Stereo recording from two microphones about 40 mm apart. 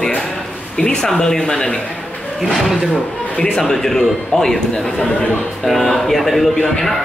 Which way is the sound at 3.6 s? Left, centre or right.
Centre.